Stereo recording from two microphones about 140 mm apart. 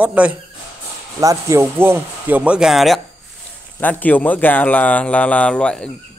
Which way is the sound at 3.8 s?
10° left (ahead or behind).